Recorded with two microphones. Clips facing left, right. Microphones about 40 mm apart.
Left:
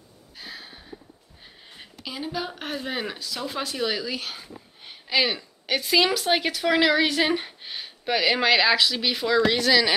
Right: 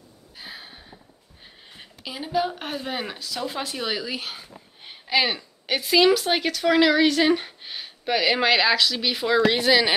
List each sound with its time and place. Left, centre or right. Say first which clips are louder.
0.4 s a sound: even; centre
1.8 s a woman's voice: left 1 dB; centre
9.5 s speech: right 1 dB; centre